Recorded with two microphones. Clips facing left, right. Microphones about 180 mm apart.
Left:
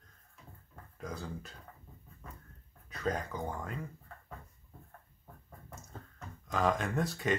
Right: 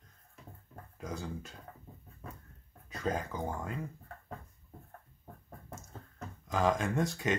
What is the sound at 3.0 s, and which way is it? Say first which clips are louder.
Speech: even; 5° right (ahead or behind).